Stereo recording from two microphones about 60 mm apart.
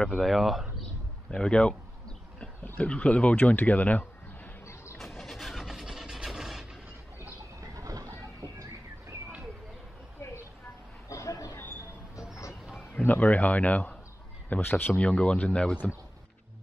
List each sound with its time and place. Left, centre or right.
0.2 s speech: centre
1.3 s a sound: centre
2.6 s speech: left
4.9 s vehicle: centre
7.6 s a sound: right
11.1 s a sound: left
12.2 s music: left
12.9 s speech: left
14.6 s speech: left
15.0 s speech: centre